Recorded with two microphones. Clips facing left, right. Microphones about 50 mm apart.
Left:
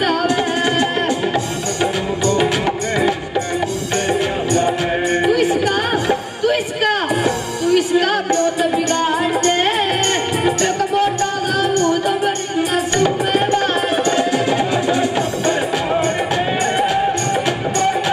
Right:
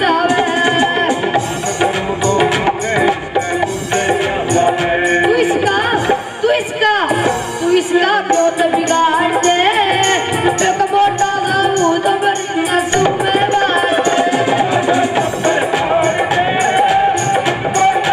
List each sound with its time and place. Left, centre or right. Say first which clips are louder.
0.0 s music: right 4 dB; right